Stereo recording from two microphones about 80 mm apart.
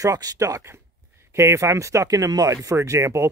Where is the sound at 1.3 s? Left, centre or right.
Right.